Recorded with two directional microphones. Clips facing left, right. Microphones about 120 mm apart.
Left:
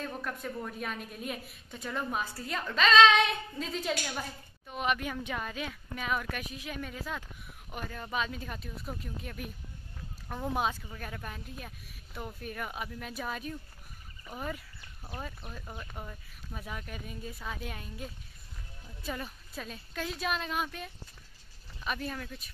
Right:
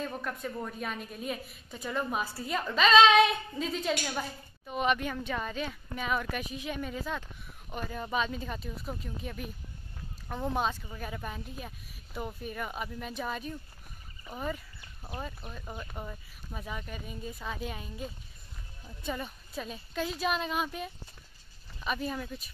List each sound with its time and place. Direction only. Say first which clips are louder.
0.0 s a woman's voice: right 2 dB; centre (ahead or behind)
10.9 s a woman's voice: right 3 dB; 5° right (ahead or behind)